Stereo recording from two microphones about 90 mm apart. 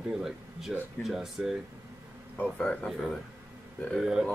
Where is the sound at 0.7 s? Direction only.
5° right (ahead or behind).